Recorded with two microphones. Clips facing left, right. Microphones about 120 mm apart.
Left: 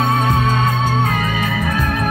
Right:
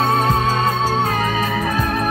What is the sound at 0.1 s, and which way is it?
Music, 35° right (ahead or behind).